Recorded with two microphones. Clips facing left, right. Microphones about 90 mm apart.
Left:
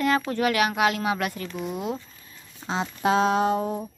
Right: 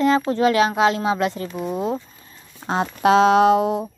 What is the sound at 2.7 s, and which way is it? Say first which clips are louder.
Speech: right 6 dB; 55° right (ahead or behind).